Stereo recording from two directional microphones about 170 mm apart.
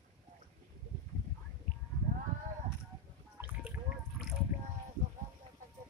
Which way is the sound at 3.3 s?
10° right (ahead or behind).